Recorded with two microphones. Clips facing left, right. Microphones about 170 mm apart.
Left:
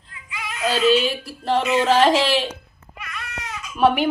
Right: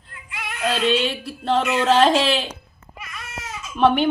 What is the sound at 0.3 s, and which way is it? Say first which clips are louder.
Music: even; 60° right (ahead or behind).